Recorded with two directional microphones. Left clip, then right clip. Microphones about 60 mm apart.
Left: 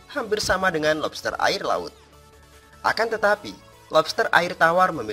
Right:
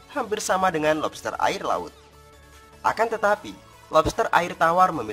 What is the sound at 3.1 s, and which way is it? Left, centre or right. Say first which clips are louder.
Speech: left 1 dB; centre.